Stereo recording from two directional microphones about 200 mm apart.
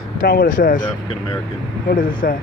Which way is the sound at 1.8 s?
45° left (ahead or behind).